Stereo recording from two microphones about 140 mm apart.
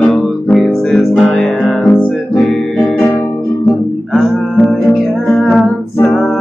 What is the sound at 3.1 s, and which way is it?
Music, 20° left (ahead or behind).